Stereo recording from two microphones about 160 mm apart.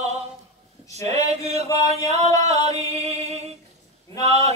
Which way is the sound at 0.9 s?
45° right (ahead or behind).